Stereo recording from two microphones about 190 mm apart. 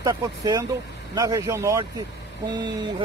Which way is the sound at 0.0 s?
15° right (ahead or behind).